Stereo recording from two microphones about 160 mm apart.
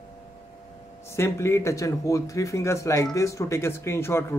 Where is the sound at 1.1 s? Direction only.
15° left (ahead or behind).